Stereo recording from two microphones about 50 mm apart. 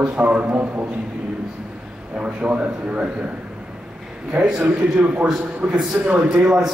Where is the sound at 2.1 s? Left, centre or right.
Right.